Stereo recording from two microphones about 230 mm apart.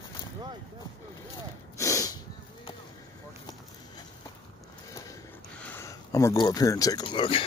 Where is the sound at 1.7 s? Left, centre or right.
Centre.